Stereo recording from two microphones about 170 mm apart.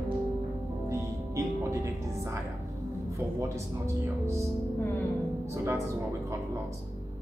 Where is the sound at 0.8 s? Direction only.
15° right (ahead or behind).